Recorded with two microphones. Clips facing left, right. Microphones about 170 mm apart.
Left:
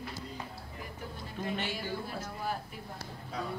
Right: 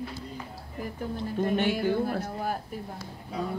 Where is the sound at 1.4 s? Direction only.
50° right (ahead or behind).